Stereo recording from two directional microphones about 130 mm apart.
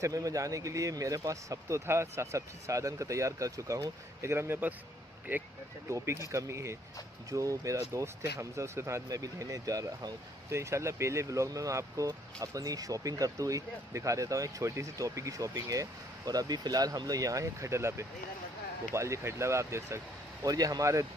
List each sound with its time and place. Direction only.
0.0 s speech: 25° right (ahead or behind)